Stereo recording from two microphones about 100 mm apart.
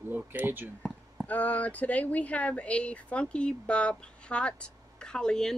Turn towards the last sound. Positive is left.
turn(degrees=5)  # may be behind; listen again after turning